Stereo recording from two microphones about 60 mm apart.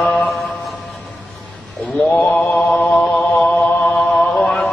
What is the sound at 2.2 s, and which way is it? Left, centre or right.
Mantra, left.